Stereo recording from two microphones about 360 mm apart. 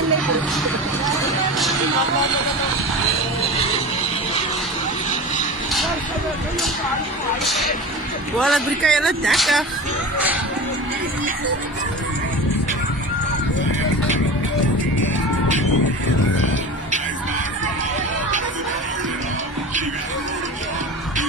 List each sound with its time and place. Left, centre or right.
7.4 s speech: centre